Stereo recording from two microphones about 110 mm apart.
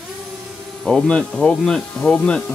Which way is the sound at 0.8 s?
5° left (ahead or behind).